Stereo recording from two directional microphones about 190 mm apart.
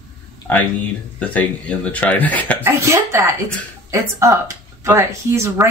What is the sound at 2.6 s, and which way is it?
Speech, 15° right (ahead or behind).